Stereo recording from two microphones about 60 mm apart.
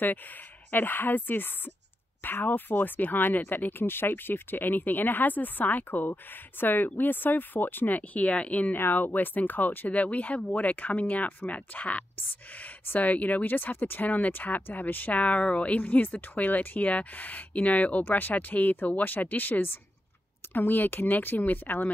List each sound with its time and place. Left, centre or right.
0.0 s speech: left
8.7 s speech: left